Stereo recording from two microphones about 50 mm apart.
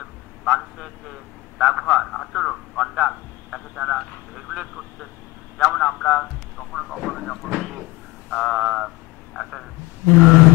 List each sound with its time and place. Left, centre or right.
0.5 s a man's voice: centre